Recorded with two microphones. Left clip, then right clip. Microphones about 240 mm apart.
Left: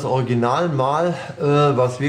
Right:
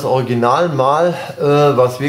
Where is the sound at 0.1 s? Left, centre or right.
Centre.